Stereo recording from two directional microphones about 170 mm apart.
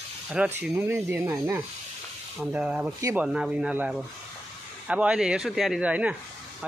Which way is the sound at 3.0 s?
20° right (ahead or behind).